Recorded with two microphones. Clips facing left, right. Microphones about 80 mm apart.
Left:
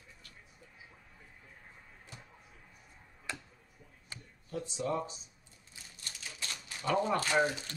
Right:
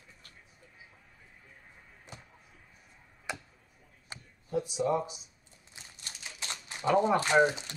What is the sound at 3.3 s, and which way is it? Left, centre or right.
Tick-tock, centre.